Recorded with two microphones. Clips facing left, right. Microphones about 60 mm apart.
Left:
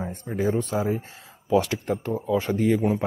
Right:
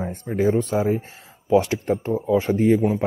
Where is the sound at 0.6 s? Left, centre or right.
Right.